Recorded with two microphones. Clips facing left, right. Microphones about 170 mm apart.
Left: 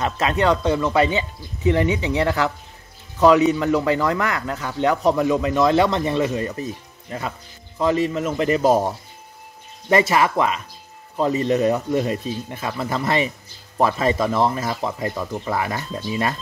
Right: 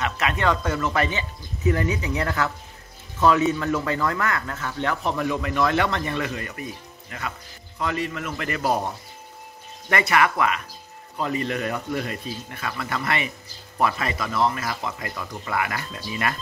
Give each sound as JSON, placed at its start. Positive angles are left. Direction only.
{"t": 0.0, "sound": "speech", "side_deg": 30}
{"t": 0.6, "sound": "speech", "side_deg": 15}
{"t": 9.8, "sound": "speech", "side_deg": 25}